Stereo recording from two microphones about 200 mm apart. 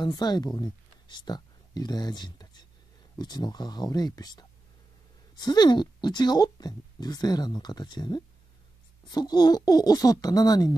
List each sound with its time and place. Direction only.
0.0 s speech: 20° left (ahead or behind)